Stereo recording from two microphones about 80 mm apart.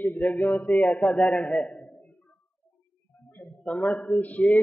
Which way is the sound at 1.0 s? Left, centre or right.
Centre.